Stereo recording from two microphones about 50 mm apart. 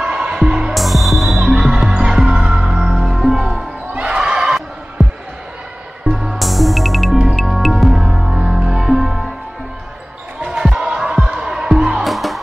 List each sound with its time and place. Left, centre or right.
0.0 s music: centre
0.7 s music: centre
3.9 s neigh: centre
5.0 s basketball bounce: centre
6.0 s music: centre
10.8 s music: centre
12.0 s music: centre